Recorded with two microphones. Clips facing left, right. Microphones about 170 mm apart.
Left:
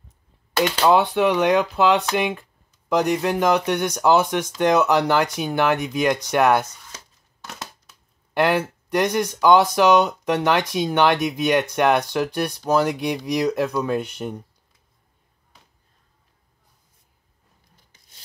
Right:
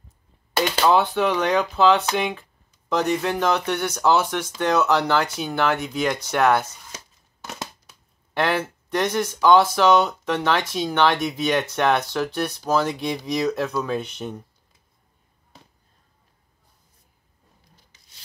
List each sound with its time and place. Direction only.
0.8 s speech: 15° left (ahead or behind)
7.4 s crushing: 5° right (ahead or behind)
8.4 s speech: 15° left (ahead or behind)
17.9 s a sound: 55° left (ahead or behind)